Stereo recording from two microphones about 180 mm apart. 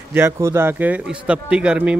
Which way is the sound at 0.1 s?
15° right (ahead or behind).